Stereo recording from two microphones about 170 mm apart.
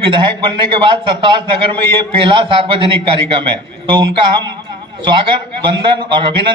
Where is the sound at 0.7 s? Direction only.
30° right (ahead or behind).